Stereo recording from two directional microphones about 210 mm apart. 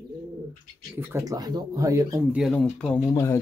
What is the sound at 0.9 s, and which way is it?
Speech, 15° right (ahead or behind).